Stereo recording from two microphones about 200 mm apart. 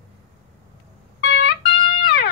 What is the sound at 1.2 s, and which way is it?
Music, 60° left (ahead or behind).